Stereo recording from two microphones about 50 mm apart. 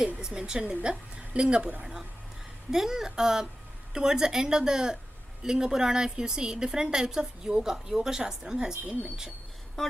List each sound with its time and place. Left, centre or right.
0.2 s a woman's voice: centre